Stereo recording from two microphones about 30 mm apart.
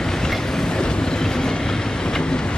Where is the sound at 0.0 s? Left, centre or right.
Centre.